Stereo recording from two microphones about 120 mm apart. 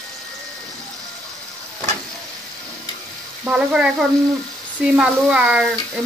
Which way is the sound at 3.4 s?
10° right (ahead or behind).